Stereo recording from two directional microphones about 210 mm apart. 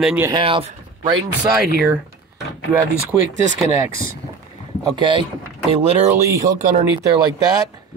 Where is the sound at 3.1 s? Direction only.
Centre (ahead or behind).